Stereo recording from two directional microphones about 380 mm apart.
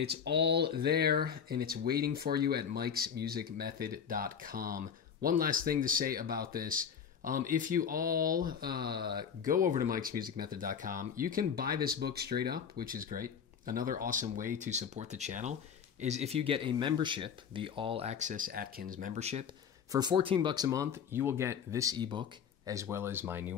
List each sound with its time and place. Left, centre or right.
0.0 s speech: right; by 23.5 s centre